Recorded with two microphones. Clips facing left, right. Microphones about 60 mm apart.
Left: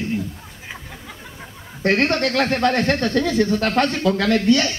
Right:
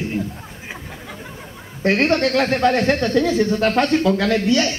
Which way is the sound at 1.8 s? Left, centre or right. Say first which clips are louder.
Right 2 dB; centre.